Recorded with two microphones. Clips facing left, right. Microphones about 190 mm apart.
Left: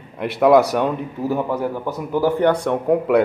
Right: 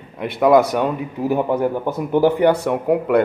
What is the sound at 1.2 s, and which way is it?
A man's voice, 15° right (ahead or behind).